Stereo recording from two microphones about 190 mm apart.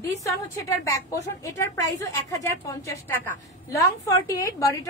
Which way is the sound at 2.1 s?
15° left (ahead or behind).